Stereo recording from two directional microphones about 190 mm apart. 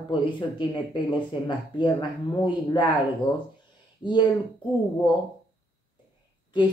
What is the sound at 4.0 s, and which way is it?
Speech, 25° left (ahead or behind).